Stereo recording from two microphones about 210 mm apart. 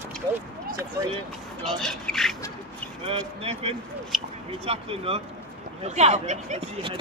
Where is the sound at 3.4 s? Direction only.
30° right (ahead or behind).